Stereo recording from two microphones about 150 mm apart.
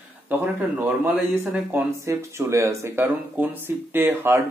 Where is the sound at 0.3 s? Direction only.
10° right (ahead or behind).